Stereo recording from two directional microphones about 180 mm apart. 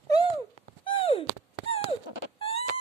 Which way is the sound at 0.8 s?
30° left (ahead or behind).